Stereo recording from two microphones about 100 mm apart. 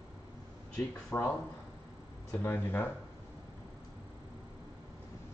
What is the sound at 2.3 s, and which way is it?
Speech, 20° left (ahead or behind).